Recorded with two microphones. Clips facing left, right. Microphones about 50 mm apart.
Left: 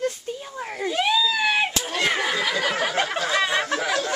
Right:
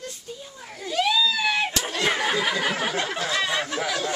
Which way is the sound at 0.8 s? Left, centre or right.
Left.